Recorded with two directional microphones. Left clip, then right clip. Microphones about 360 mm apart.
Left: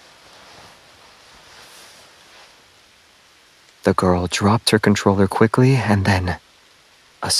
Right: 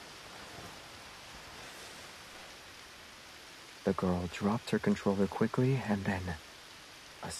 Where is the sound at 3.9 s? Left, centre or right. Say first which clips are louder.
Left 16 dB; left.